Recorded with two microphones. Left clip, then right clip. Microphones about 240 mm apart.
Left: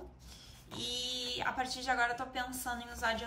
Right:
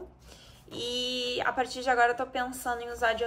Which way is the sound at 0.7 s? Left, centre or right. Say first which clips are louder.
Right 6 dB; centre.